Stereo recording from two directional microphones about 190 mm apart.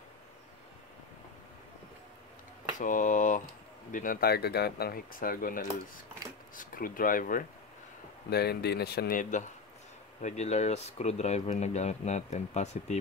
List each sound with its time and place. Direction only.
2.8 s speech: 45° left (ahead or behind)
8.3 s speech: 55° left (ahead or behind); by 13.0 s 35° left (ahead or behind)